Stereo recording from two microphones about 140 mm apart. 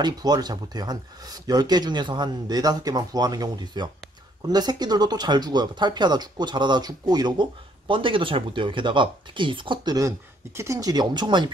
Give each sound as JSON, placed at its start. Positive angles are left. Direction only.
{"t": 0.0, "sound": "speech", "side_deg": -30}